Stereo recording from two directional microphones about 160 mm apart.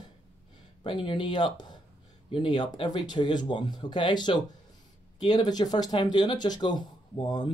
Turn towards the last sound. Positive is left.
turn(degrees=30)  # may be behind; listen again after turning